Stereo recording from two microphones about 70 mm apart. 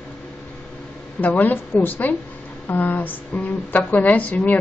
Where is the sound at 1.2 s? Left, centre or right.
Left.